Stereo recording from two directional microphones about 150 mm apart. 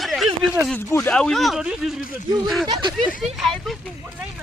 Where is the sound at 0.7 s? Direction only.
15° left (ahead or behind).